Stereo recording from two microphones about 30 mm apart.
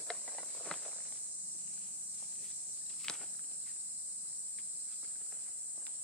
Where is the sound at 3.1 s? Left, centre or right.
Centre.